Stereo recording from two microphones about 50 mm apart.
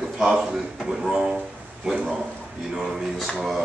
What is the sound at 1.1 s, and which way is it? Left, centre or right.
Speech, right.